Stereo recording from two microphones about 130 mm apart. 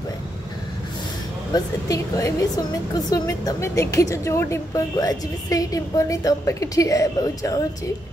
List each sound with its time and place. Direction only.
1.5 s a woman's voice: 25° left (ahead or behind)